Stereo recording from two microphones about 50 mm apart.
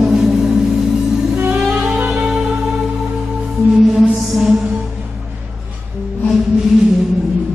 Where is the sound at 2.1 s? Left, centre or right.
Centre.